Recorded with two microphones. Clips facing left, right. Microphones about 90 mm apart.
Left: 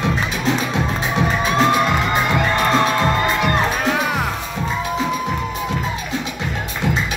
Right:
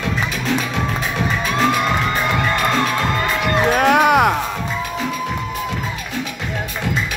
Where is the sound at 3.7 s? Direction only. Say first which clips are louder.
Right 7 dB; 60° right (ahead or behind).